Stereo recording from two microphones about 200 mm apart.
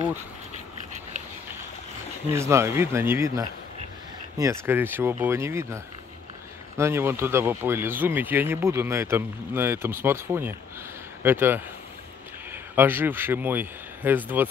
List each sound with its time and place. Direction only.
2.3 s speech: 15° right (ahead or behind)
6.8 s speech: 10° right (ahead or behind)